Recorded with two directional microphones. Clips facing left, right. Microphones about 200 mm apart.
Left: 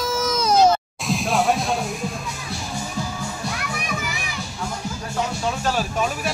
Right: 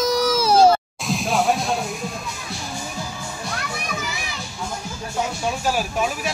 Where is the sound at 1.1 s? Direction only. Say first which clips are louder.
Even; centre (ahead or behind).